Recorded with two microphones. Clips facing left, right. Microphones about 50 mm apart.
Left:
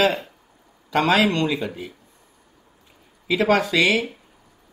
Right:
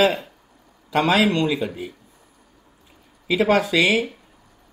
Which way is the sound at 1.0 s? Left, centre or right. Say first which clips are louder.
Even; left.